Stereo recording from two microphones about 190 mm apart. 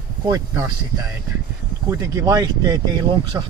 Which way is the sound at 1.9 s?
15° right (ahead or behind).